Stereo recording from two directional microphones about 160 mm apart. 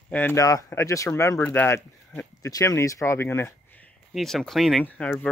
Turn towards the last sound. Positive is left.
turn(degrees=10)  # may be behind; listen again after turning